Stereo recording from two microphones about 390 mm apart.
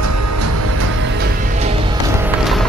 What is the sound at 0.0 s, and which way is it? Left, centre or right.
Music, right.